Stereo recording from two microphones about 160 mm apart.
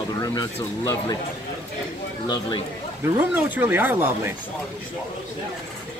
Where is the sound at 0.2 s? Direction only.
20° left (ahead or behind).